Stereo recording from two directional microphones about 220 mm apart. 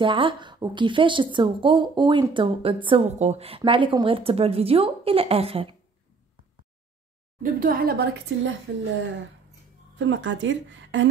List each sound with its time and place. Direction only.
0.0 s speech: 25° right (ahead or behind)
7.4 s a woman's voice: 40° right (ahead or behind); by 11.1 s 60° right (ahead or behind)